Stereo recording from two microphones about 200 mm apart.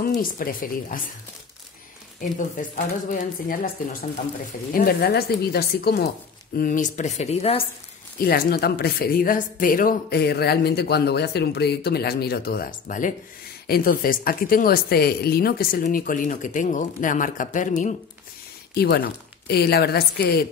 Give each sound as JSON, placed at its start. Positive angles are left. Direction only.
{"t": 0.0, "sound": "a woman's voice", "side_deg": 45}
{"t": 2.1, "sound": "speech", "side_deg": 40}
{"t": 4.7, "sound": "a woman's voice", "side_deg": 50}
{"t": 8.2, "sound": "a woman's voice", "side_deg": 50}
{"t": 18.8, "sound": "a woman's voice", "side_deg": 55}